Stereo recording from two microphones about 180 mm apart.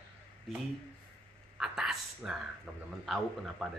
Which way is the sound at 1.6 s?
Centre (ahead or behind).